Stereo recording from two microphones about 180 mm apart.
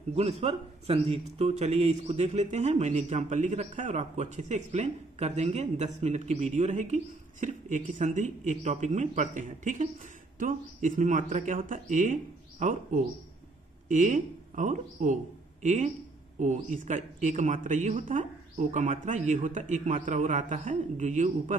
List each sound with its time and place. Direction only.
0.1 s speech: 35° right (ahead or behind)